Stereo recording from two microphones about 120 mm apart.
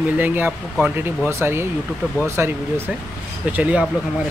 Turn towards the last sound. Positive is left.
turn(degrees=-10)  # may be behind; listen again after turning